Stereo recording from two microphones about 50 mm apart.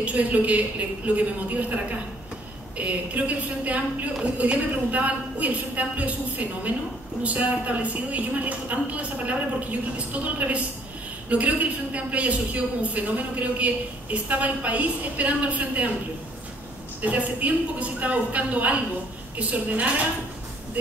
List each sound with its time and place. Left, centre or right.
0.0 s a man's voice: right
2.8 s a man's voice: right
17.0 s a man's voice: right